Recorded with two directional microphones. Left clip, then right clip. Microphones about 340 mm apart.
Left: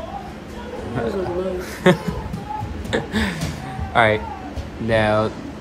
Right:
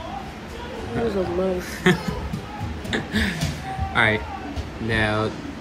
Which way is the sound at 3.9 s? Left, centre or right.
Centre.